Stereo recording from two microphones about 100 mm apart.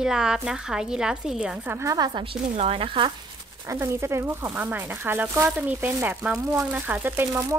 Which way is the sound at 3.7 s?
25° right (ahead or behind).